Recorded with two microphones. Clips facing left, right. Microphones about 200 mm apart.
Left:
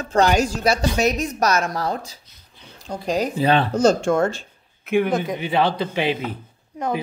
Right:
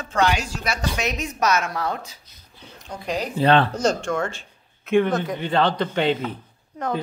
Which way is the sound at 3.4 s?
10° left (ahead or behind).